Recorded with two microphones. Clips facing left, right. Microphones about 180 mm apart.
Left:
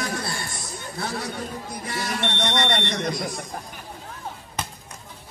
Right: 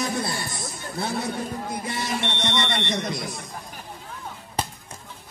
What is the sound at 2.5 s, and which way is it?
Speech, 55° left (ahead or behind).